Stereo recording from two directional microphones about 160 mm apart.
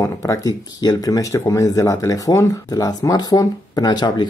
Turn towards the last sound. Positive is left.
turn(degrees=25)  # may be behind; listen again after turning